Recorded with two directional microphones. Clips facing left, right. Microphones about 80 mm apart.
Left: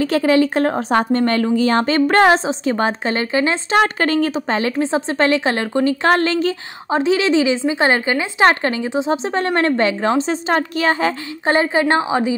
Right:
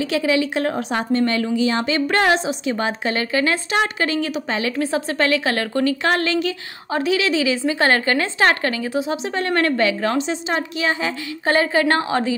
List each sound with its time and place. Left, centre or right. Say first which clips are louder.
0.0 s a woman's voice: left 5 dB; left
3.7 s a woman's voice: left 8 dB; left; by 8.5 s centre
8.5 s a woman's voice: left 3 dB; left
10.5 s a woman's voice: left 5 dB; left
11.4 s a woman's voice: left 2 dB; left